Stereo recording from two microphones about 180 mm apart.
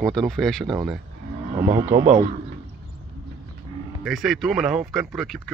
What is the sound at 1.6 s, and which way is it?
Speech, 40° right (ahead or behind).